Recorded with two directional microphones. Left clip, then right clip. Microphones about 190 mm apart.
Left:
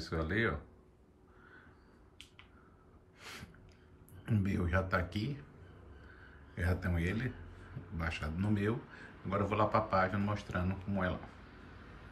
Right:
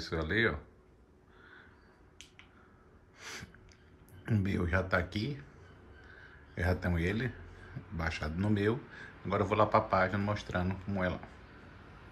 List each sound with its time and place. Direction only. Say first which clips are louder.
0.0 s a man's voice: right 4 dB; centre (ahead or behind)
3.2 s a sound: right 4 dB; 5° right (ahead or behind)
4.2 s a man's voice: right 3 dB; 5° right (ahead or behind)
6.5 s a man's voice: right 4 dB; 5° right (ahead or behind)